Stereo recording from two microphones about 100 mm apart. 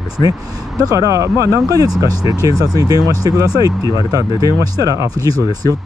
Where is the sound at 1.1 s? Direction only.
35° right (ahead or behind).